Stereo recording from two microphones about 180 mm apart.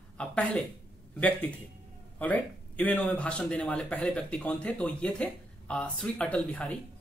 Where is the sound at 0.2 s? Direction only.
5° left (ahead or behind).